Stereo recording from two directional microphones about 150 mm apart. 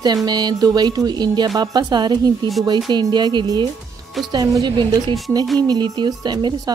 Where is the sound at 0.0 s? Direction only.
25° right (ahead or behind).